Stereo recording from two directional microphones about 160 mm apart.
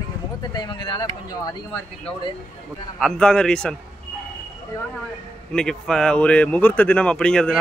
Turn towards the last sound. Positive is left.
turn(degrees=5)  # may be behind; listen again after turning